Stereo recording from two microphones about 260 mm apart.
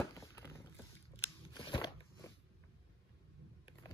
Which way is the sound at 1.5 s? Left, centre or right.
Centre.